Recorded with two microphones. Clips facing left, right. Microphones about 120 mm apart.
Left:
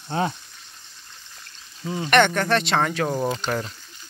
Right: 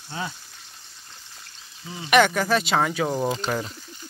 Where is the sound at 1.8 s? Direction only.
40° left (ahead or behind).